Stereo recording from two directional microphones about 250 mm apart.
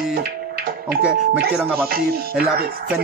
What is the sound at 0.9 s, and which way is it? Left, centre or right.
Music, centre.